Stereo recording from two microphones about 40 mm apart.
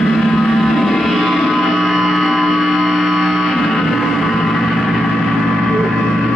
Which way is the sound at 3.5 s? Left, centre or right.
Centre.